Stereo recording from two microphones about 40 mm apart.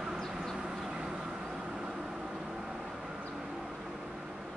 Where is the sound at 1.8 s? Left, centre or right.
Centre.